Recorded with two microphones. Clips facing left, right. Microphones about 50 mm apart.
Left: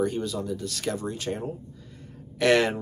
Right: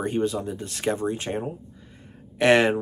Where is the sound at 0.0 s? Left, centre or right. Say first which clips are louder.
Right 2 dB; right.